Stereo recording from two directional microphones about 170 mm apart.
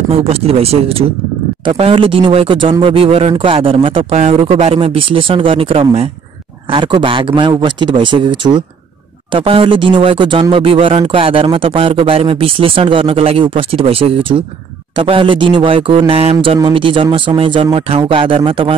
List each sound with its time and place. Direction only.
0.1 s speech: 35° right (ahead or behind)